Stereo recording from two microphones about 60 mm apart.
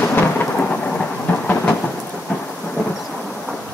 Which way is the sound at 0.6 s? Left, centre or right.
Centre.